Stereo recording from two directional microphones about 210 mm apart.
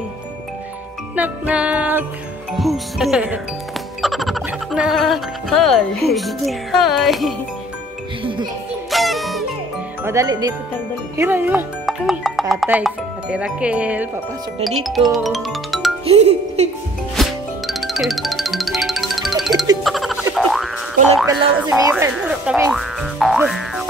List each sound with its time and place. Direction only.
1.1 s music: 5° right (ahead or behind)
8.2 s music: 25° right (ahead or behind)
8.9 s music: centre (ahead or behind)
10.0 s music: 15° right (ahead or behind)
11.1 s speech: 10° right (ahead or behind)
14.8 s music: centre (ahead or behind)
16.1 s speech: 30° right (ahead or behind)
17.2 s music: centre (ahead or behind)
21.3 s music: 15° right (ahead or behind)
21.9 s music: 5° right (ahead or behind)